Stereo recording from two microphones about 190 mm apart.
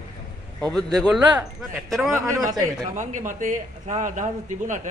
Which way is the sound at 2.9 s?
40° right (ahead or behind).